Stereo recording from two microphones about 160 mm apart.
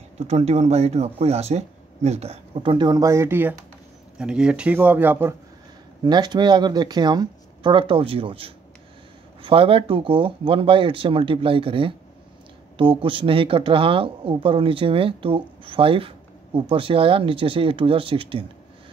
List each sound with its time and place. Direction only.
0.3 s speech: 45° right (ahead or behind); by 5.3 s 15° right (ahead or behind)
6.0 s speech: 25° right (ahead or behind)